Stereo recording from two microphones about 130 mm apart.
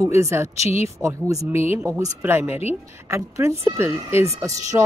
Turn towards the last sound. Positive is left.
turn(degrees=-20)  # may be behind; listen again after turning